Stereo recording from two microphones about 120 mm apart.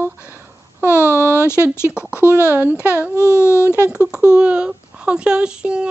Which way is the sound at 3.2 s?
20° left (ahead or behind).